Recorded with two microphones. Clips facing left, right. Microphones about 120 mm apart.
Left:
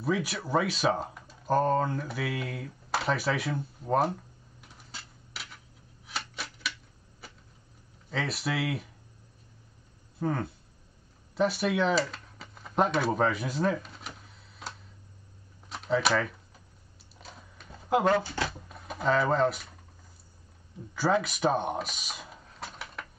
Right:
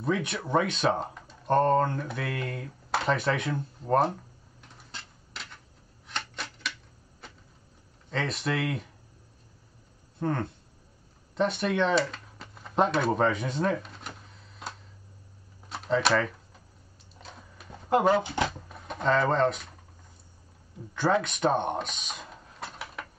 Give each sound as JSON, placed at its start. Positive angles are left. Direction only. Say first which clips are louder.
{"t": 0.0, "sound": "speech", "louder": "right 1 dB", "side_deg": 5}
{"t": 4.6, "sound": "dishes", "louder": "right 2 dB", "side_deg": 5}
{"t": 6.0, "sound": "typewriter", "louder": "right 1 dB", "side_deg": 5}
{"t": 7.2, "sound": "a sound", "louder": "right 1 dB", "side_deg": 5}
{"t": 8.1, "sound": "speech", "louder": "right 2 dB", "side_deg": 5}
{"t": 10.1, "sound": "speech", "louder": "right 1 dB", "side_deg": 5}
{"t": 11.3, "sound": "a sound", "louder": "even", "side_deg": 5}
{"t": 15.7, "sound": "speech", "louder": "right 2 dB", "side_deg": 0}
{"t": 17.2, "sound": "a sound", "louder": "right 2 dB", "side_deg": 0}
{"t": 18.2, "sound": "speech", "louder": "right 4 dB", "side_deg": -20}
{"t": 18.5, "sound": "speech", "louder": "right 2 dB", "side_deg": 0}
{"t": 20.9, "sound": "speech", "louder": "right 1 dB", "side_deg": 5}